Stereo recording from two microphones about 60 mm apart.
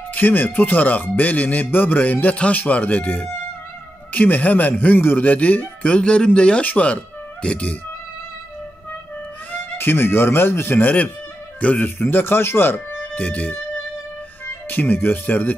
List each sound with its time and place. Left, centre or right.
0.1 s speech: left
9.5 s speech: left
11.6 s speech: left
12.0 s speech: left
12.7 s speech: left
14.4 s speech: left